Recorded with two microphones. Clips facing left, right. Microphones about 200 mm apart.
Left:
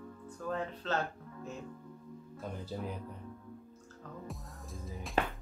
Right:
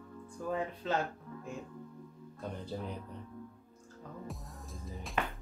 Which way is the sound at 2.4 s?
5° left (ahead or behind).